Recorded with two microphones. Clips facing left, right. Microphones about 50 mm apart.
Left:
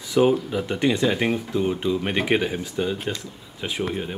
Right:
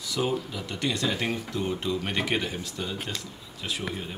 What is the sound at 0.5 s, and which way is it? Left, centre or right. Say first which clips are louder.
Speech: left 8 dB; left.